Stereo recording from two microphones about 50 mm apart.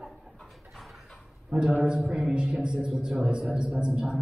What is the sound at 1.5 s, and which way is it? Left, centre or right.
Speech, right.